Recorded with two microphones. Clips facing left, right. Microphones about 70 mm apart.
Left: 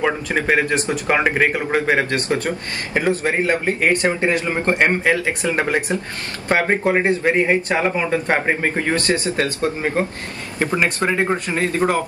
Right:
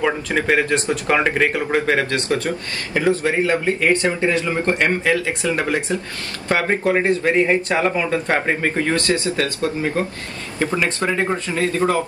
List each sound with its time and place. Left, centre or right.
0.0 s speech: centre
2.2 s speech: left